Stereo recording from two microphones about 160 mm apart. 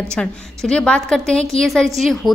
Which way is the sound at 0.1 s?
5° left (ahead or behind).